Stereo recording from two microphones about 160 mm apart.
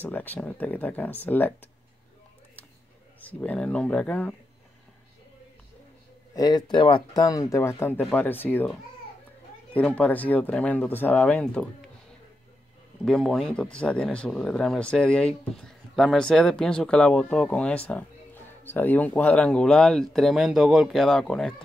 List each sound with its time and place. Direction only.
0.0 s speech: 10° left (ahead or behind)
3.2 s speech: 10° left (ahead or behind)
6.3 s speech: 25° left (ahead or behind)
9.8 s speech: 10° left (ahead or behind)
13.0 s speech: 5° left (ahead or behind)